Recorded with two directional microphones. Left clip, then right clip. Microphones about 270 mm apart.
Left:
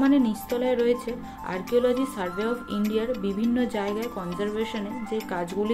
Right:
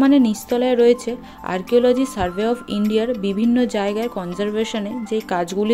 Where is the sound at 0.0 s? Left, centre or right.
Right.